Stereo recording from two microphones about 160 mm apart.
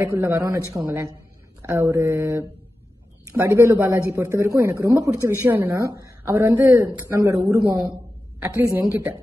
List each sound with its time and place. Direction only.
0.0 s a man's voice: 15° right (ahead or behind)